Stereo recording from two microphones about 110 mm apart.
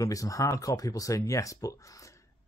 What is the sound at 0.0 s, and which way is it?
Speech, 30° left (ahead or behind).